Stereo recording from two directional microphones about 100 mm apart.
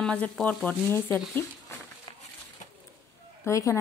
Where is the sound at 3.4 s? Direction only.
30° left (ahead or behind).